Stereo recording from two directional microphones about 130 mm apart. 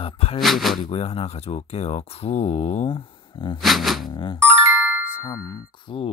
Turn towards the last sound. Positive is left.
turn(degrees=45)  # may be behind; listen again after turning